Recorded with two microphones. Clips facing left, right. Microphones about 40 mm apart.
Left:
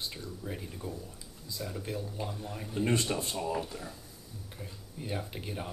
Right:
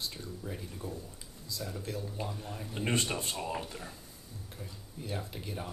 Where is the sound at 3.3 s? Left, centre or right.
Centre.